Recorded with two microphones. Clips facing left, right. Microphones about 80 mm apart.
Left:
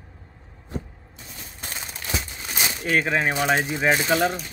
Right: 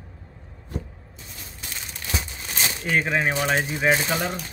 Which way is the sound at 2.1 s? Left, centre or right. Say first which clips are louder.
Left 1 dB; centre.